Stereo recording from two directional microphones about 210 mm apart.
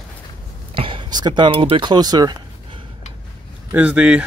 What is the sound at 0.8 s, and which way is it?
Speech, 25° right (ahead or behind).